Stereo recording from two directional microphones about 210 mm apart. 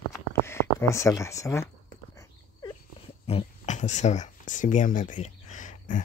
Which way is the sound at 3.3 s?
30° left (ahead or behind).